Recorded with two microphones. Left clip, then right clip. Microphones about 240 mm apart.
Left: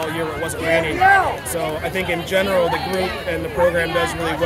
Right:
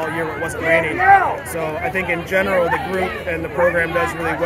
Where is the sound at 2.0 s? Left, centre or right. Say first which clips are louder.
Right 1 dB; centre.